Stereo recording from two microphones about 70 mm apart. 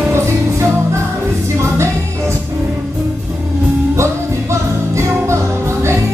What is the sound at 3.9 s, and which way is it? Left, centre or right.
Music, right.